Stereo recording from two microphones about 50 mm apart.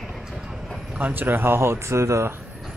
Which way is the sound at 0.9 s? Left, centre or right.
Right.